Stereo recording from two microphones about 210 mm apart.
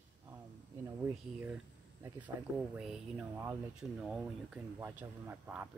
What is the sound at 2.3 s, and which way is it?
Speech, 15° right (ahead or behind).